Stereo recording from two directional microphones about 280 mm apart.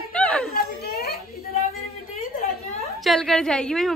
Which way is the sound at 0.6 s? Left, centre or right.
Left.